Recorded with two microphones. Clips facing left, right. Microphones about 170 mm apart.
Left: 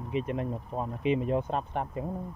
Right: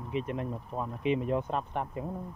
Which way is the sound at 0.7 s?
15° left (ahead or behind).